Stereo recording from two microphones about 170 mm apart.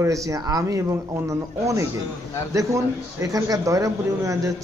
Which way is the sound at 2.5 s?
20° right (ahead or behind).